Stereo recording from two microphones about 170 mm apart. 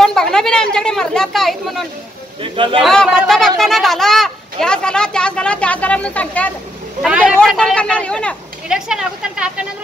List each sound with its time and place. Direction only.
0.0 s speech: 5° left (ahead or behind)
2.4 s a man's voice: 30° right (ahead or behind)
2.8 s speech: centre (ahead or behind)
7.0 s speech: 5° right (ahead or behind)
8.6 s speech: 5° right (ahead or behind)